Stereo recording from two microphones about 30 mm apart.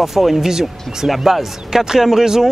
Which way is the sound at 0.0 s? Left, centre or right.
Centre.